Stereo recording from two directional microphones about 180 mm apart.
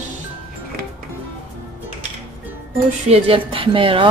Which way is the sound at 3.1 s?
30° right (ahead or behind).